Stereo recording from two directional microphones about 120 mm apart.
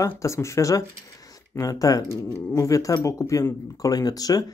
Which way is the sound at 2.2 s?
20° left (ahead or behind).